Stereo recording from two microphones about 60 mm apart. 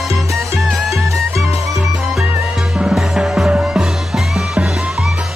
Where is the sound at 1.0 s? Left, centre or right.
Right.